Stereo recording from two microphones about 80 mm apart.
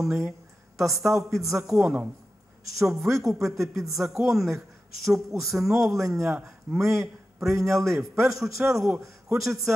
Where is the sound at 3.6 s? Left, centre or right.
Right.